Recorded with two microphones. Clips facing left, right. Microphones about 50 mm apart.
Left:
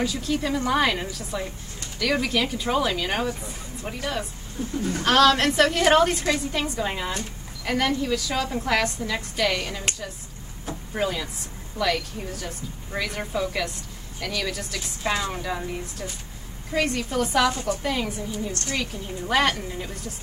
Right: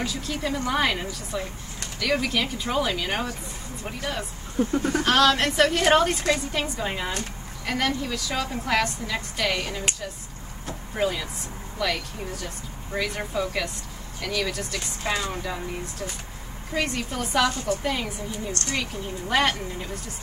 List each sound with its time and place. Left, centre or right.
0.0 s a woman's voice: centre
4.6 s speech: right
5.0 s a woman's voice: centre